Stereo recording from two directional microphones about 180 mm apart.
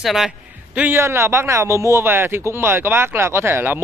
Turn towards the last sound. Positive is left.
turn(degrees=-10)  # may be behind; listen again after turning